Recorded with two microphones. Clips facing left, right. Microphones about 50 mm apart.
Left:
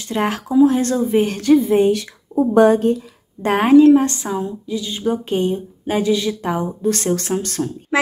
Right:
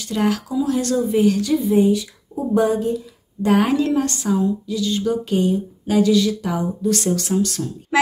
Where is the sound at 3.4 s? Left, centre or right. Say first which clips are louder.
Left 7 dB; left.